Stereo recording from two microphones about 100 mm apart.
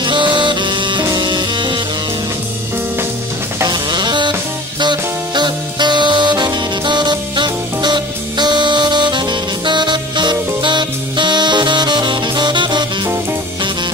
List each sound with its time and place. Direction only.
0.0 s music: 50° right (ahead or behind)
3.6 s music: 50° right (ahead or behind)